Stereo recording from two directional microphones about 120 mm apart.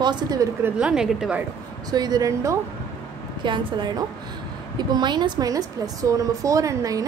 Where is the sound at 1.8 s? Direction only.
35° right (ahead or behind).